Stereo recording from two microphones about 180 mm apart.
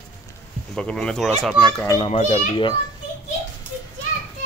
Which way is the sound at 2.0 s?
35° left (ahead or behind).